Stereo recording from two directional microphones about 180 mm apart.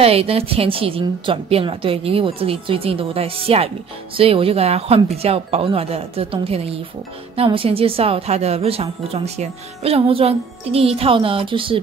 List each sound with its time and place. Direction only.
0.0 s a woman's voice: 35° right (ahead or behind)